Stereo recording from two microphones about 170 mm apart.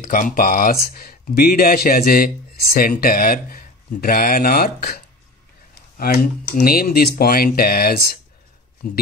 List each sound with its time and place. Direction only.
0.0 s speech: 50° left (ahead or behind)